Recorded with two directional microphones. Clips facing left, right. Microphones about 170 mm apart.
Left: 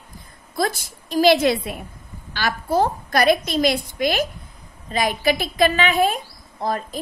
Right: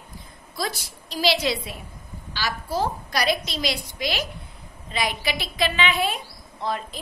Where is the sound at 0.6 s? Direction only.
50° left (ahead or behind).